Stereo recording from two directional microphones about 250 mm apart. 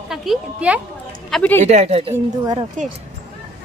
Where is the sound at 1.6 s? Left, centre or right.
Right.